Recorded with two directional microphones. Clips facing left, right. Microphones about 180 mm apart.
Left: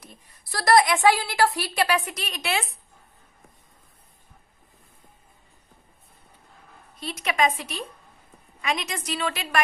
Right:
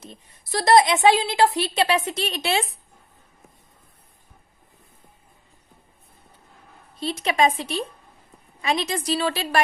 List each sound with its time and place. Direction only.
0.0 s a woman's voice: 25° right (ahead or behind)
7.0 s a woman's voice: 30° right (ahead or behind)